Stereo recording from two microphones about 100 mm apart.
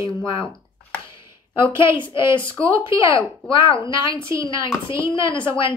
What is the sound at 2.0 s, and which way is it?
A child's voice, 55° left (ahead or behind).